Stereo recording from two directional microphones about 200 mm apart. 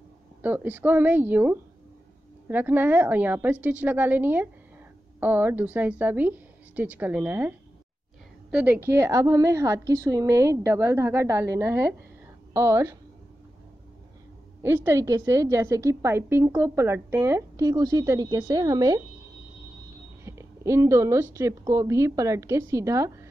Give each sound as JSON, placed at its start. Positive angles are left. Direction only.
{"t": 0.4, "sound": "a woman's voice", "side_deg": -10}
{"t": 14.6, "sound": "a woman's voice", "side_deg": -10}
{"t": 20.2, "sound": "a woman's voice", "side_deg": -15}